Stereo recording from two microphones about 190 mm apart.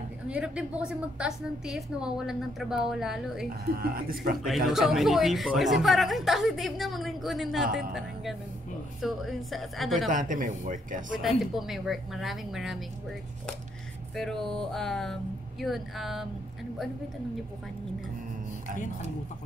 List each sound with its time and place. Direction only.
0.3 s a woman's voice: 5° right (ahead or behind)
3.4 s speech: 50° right (ahead or behind)
4.6 s a woman's voice: centre (ahead or behind)
10.0 s speech: 45° right (ahead or behind)
11.1 s a woman's voice: centre (ahead or behind)
14.1 s a woman's voice: centre (ahead or behind)